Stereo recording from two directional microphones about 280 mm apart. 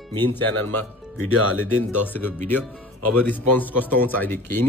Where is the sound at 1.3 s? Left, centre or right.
Right.